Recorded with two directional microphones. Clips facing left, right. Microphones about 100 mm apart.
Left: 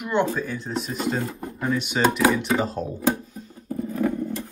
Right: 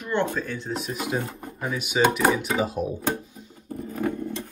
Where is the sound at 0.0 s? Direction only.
15° left (ahead or behind); by 2.7 s 5° right (ahead or behind).